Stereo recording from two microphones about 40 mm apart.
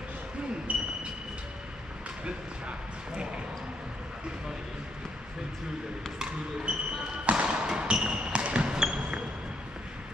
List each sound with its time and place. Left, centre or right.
6.7 s basketball bounce: right
7.2 s a sound: right
7.6 s basketball bounce: right